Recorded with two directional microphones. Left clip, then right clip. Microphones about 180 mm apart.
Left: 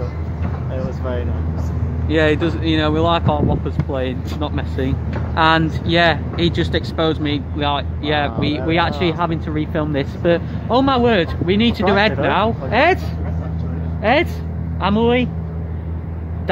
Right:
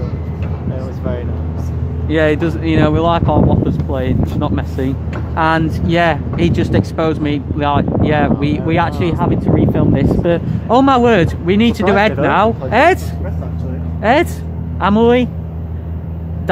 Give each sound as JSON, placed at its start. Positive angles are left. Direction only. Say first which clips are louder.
{"t": 2.0, "sound": "speech", "louder": "right 2 dB", "side_deg": -5}
{"t": 10.7, "sound": "speech", "louder": "right 5 dB", "side_deg": -20}
{"t": 14.0, "sound": "a man's voice", "louder": "right 3 dB", "side_deg": -20}